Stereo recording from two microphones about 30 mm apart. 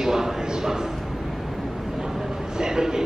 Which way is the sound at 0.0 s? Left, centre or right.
Centre.